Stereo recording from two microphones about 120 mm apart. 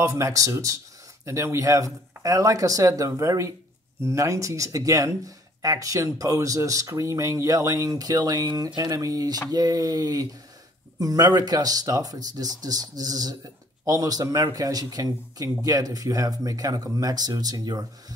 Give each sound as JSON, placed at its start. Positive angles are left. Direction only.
{"t": 0.0, "sound": "speech", "side_deg": -25}